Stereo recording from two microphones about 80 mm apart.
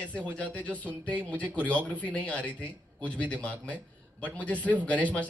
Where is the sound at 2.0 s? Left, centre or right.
Centre.